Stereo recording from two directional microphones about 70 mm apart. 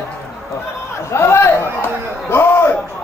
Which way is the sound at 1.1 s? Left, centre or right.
Left.